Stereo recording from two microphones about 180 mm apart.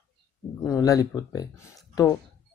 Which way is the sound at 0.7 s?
20° left (ahead or behind).